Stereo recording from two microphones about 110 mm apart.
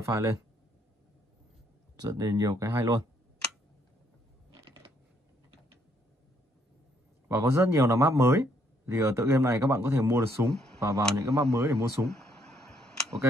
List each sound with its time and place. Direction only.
0.0 s speech: 30° right (ahead or behind)
2.0 s speech: 35° right (ahead or behind)
7.2 s speech: 25° right (ahead or behind)